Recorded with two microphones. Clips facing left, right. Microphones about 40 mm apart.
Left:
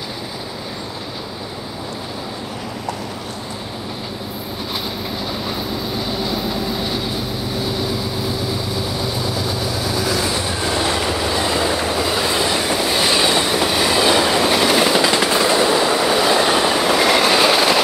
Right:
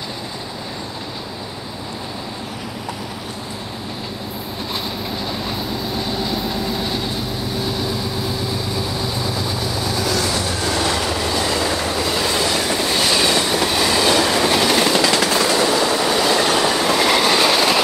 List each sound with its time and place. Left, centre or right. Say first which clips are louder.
5.9 s vehicle: even; centre
10.2 s train: even; left
13.0 s train: even; left; by 17.8 s centre